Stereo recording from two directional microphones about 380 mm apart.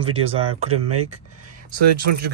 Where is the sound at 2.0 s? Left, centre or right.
Right.